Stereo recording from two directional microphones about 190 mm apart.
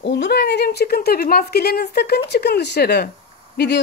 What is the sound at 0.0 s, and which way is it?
Speech, 65° left (ahead or behind).